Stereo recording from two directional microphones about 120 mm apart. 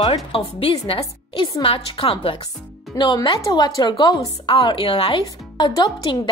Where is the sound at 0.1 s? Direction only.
55° left (ahead or behind).